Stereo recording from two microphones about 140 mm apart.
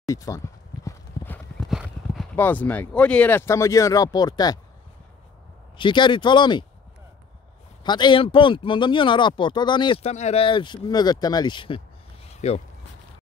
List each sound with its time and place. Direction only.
0.0 s speech: 25° left (ahead or behind)
0.8 s clip-clop: 15° left (ahead or behind)
1.6 s clip-clop: centre (ahead or behind)
2.3 s speech: 10° left (ahead or behind); by 4.6 s 30° left (ahead or behind)
5.8 s speech: 35° left (ahead or behind)
7.8 s speech: 30° left (ahead or behind)
10.0 s speech: 50° left (ahead or behind); by 11.8 s 35° left (ahead or behind)
12.3 s a sound: 50° left (ahead or behind)